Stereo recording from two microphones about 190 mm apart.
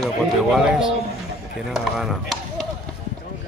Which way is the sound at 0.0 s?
Centre (ahead or behind).